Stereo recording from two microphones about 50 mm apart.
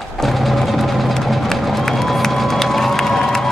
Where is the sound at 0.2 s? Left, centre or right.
Centre.